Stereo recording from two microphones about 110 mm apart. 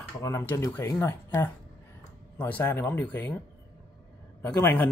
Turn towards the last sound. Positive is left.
turn(degrees=25)  # may be behind; listen again after turning